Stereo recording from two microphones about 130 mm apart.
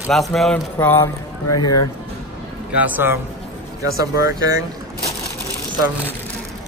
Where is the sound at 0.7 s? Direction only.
20° left (ahead or behind).